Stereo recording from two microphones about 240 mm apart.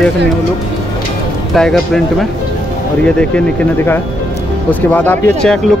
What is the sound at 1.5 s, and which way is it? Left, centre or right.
Speech, centre.